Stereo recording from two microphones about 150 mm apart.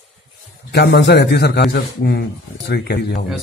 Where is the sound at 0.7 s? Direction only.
90° left.